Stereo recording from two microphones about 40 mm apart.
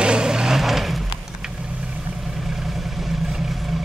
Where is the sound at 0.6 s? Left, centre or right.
Centre.